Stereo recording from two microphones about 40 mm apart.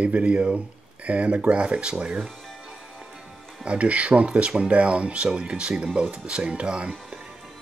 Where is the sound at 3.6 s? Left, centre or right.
Right.